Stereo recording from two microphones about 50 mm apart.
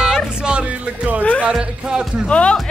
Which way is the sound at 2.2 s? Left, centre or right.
Centre.